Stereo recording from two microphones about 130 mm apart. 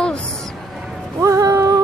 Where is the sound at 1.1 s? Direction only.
25° right (ahead or behind).